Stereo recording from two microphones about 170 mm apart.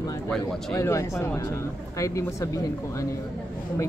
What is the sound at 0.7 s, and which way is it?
Speech, 15° left (ahead or behind).